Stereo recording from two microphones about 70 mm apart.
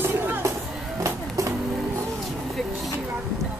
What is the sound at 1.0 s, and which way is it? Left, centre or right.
Music, right.